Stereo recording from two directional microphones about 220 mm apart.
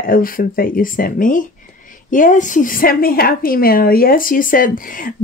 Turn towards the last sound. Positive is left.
turn(degrees=40)  # may be behind; listen again after turning